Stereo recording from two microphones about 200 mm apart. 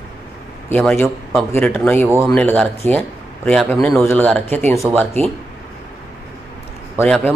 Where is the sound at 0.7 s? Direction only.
10° left (ahead or behind).